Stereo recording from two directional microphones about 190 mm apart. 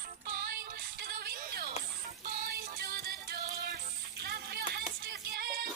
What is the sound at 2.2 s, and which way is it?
Music, 50° right (ahead or behind).